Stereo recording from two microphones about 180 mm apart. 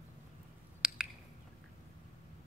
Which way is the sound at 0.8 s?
5° right (ahead or behind).